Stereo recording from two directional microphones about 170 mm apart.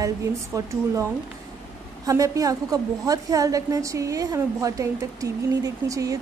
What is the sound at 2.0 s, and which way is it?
A woman's voice, 20° right (ahead or behind).